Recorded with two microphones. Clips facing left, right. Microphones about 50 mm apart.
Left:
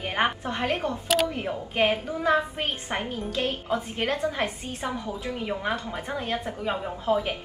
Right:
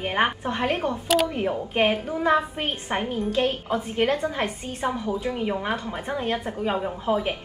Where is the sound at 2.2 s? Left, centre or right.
Centre.